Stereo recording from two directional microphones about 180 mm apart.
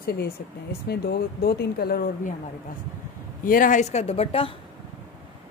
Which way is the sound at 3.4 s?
50° left (ahead or behind).